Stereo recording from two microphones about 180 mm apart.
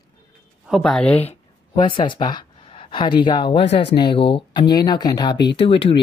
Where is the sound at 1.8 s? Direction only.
25° left (ahead or behind).